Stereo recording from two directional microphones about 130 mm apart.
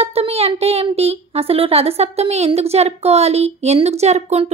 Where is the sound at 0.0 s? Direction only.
50° right (ahead or behind).